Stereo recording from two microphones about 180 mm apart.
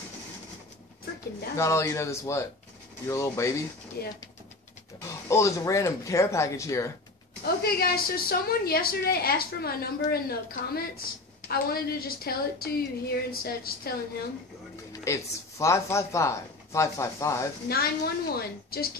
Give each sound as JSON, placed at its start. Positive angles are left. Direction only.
{"t": 1.6, "sound": "speech", "side_deg": 15}
{"t": 4.0, "sound": "a woman's voice", "side_deg": 60}
{"t": 5.3, "sound": "speech", "side_deg": 15}
{"t": 7.4, "sound": "a woman's voice", "side_deg": 55}
{"t": 14.9, "sound": "speech", "side_deg": 15}
{"t": 17.6, "sound": "a woman's voice", "side_deg": 60}